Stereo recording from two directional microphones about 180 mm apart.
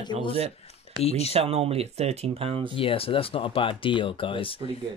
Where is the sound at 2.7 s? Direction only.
30° left (ahead or behind).